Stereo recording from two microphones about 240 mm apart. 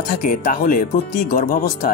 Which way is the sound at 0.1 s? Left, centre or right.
Left.